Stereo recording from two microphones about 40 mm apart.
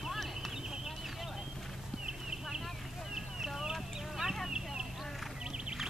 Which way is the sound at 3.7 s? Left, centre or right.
Centre.